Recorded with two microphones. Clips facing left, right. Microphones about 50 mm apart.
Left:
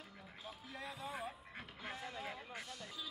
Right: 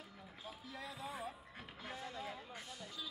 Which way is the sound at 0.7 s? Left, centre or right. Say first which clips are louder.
Left 1 dB; centre.